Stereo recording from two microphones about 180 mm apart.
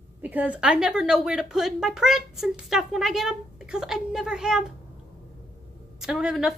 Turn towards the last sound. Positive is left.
turn(degrees=-5)  # may be behind; listen again after turning